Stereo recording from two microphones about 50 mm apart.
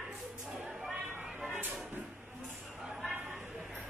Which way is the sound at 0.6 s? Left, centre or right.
Centre.